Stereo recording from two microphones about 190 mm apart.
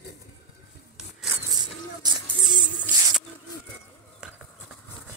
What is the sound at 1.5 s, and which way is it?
Music, 20° right (ahead or behind).